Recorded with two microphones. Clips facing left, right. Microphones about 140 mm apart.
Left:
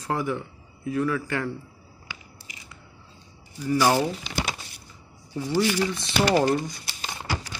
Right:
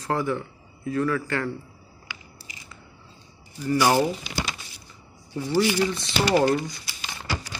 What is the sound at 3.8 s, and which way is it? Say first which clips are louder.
Speech: right 1 dB; 5° right (ahead or behind).